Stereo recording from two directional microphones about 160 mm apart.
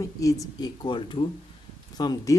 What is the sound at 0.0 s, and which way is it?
Speech, 20° left (ahead or behind).